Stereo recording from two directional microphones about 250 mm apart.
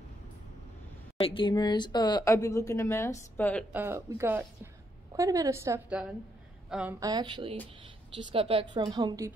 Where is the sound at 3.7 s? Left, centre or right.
Centre.